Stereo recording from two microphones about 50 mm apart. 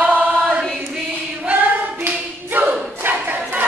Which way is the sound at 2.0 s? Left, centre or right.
Right.